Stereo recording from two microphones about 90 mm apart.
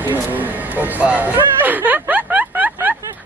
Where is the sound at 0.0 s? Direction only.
20° right (ahead or behind).